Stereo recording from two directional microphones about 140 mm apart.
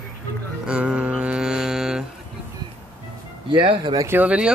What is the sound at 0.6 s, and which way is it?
Mantra, 5° right (ahead or behind).